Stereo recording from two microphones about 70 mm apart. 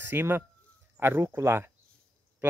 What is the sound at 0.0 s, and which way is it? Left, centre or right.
Speech, right.